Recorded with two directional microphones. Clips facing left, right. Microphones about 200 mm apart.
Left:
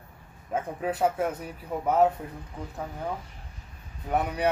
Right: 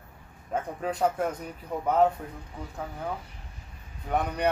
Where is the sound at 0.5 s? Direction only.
5° left (ahead or behind).